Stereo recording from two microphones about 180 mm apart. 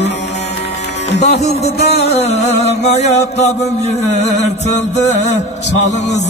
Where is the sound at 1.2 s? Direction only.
40° left (ahead or behind).